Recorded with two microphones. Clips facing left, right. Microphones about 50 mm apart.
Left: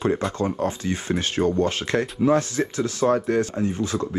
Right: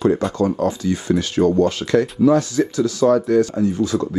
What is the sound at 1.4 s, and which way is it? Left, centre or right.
Speech, right.